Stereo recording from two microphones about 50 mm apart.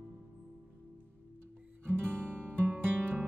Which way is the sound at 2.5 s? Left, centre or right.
Right.